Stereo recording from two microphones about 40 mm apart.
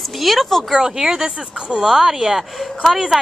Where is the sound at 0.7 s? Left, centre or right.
Centre.